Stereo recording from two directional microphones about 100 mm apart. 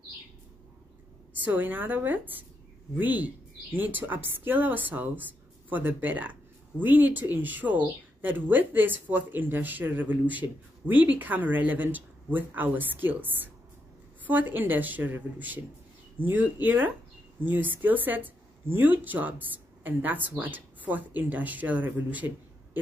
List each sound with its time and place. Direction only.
1.4 s speech: 20° right (ahead or behind)